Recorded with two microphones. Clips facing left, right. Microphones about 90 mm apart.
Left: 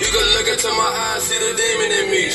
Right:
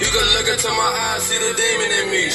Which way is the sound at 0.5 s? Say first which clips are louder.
Left 1 dB; 20° right (ahead or behind).